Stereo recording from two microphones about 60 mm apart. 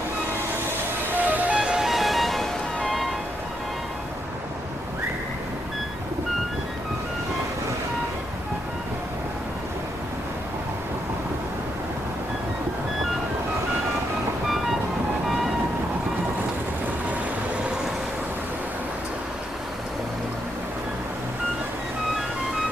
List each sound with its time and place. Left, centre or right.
1.1 s music: right
1.5 s music: centre
15.2 s vehicle: centre